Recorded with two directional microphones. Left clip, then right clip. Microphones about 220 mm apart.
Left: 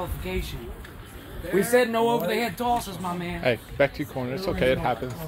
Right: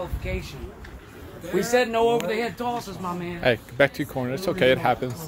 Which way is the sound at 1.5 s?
50° left (ahead or behind).